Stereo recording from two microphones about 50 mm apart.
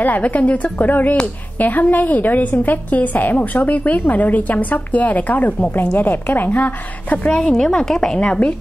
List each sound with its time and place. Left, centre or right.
0.0 s a woman's voice: left
7.2 s a woman's voice: centre